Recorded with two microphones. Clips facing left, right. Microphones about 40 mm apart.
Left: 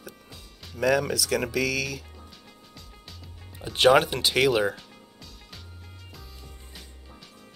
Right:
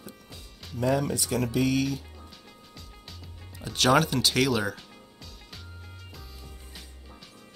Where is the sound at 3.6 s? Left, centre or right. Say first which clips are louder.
Left 4 dB; left.